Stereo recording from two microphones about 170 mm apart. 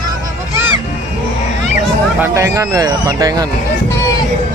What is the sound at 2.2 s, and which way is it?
Speech, 15° right (ahead or behind).